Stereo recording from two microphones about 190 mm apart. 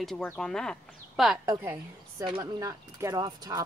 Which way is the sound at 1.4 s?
20° right (ahead or behind).